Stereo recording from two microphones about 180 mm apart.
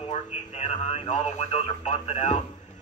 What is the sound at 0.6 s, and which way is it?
Speech, 40° left (ahead or behind).